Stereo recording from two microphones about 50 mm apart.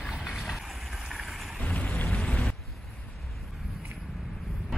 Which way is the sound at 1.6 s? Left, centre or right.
Left.